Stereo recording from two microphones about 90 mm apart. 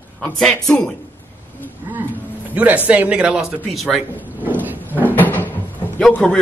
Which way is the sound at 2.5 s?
15° right (ahead or behind).